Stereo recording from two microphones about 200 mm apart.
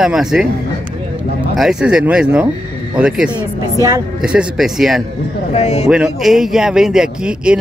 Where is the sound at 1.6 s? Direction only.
5° right (ahead or behind).